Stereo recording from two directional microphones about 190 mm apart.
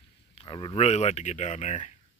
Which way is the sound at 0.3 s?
30° left (ahead or behind).